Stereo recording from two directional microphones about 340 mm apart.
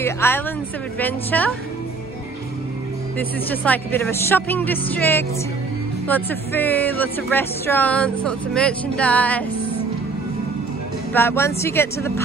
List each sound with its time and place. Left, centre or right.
0.0 s speech: centre
3.2 s speech: centre
11.1 s speech: centre